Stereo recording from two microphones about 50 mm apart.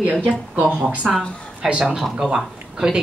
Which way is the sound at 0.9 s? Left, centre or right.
Right.